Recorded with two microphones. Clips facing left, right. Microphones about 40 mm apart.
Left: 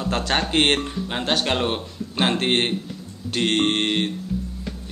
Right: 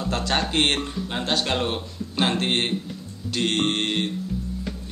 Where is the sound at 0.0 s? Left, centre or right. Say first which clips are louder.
Left 2 dB; left.